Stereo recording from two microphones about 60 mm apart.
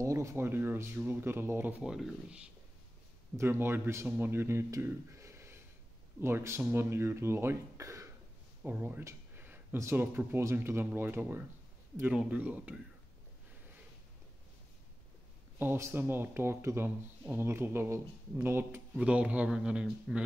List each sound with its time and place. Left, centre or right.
0.0 s speech: right
0.5 s speech: right
1.8 s speech: centre
3.3 s speech: right
5.1 s a sound: right
6.2 s speech: right
7.8 s a sound: right
8.6 s speech: right
9.3 s a sound: right
9.9 s speech: right
12.1 s speech: right
15.6 s speech: right
18.9 s speech: right